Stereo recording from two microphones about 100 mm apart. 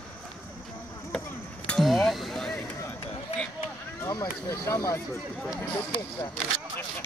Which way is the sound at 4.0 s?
35° left (ahead or behind).